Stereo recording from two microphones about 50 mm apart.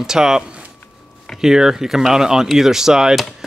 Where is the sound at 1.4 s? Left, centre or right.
Centre.